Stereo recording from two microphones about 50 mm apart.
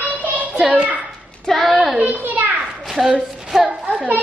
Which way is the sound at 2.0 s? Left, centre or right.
Right.